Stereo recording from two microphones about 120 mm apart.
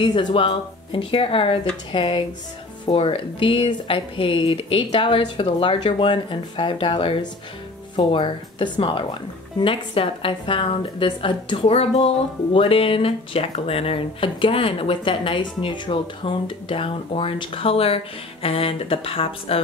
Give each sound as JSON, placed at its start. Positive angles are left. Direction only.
{"t": 0.0, "sound": "speech", "side_deg": 40}